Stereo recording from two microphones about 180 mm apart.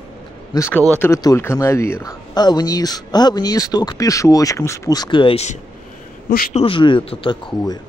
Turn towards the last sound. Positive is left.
turn(degrees=25)  # may be behind; listen again after turning